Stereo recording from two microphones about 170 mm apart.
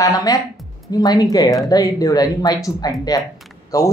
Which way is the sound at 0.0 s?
20° left (ahead or behind).